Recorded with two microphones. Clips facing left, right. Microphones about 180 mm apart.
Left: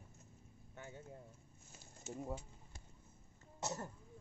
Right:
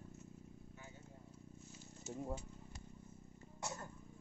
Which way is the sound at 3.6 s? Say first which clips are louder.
Left 4 dB; 25° left (ahead or behind).